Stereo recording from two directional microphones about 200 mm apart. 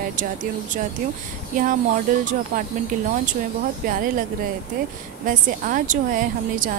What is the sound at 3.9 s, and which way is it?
Speech, 45° right (ahead or behind).